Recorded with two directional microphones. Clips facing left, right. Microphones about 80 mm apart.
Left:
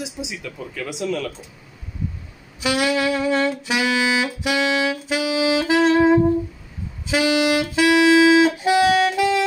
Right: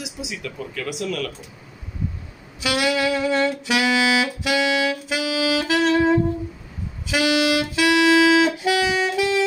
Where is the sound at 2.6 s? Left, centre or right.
Left.